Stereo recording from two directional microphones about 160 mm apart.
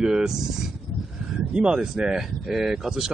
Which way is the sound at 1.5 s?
5° right (ahead or behind).